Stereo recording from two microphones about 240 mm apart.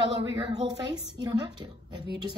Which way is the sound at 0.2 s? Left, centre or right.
Centre.